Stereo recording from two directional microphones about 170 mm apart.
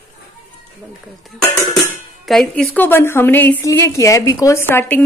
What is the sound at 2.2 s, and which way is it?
A woman's voice, centre (ahead or behind).